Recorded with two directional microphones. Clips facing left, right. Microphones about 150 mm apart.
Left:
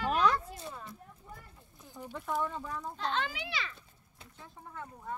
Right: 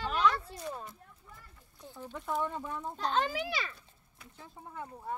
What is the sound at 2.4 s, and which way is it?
Speech, 25° right (ahead or behind).